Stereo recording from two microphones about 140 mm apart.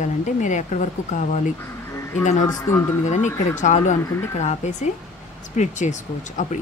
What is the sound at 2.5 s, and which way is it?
Speech, 20° left (ahead or behind).